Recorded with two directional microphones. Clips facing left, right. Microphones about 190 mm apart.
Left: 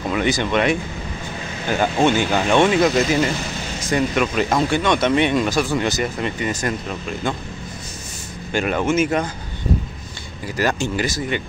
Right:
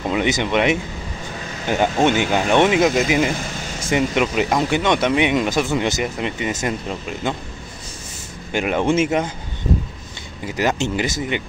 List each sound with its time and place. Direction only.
0.1 s speech: 20° right (ahead or behind)
8.5 s speech: 20° right (ahead or behind)
10.4 s speech: 20° right (ahead or behind)